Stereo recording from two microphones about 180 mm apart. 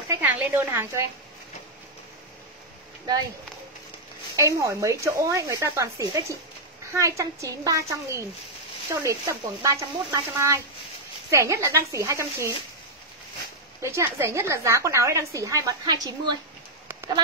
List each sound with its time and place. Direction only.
0.1 s speech: 10° right (ahead or behind)
4.4 s a woman's voice: 15° right (ahead or behind)
13.7 s a woman's voice: 15° right (ahead or behind)